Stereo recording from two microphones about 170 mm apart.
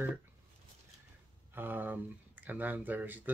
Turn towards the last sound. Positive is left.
turn(degrees=-10)  # may be behind; listen again after turning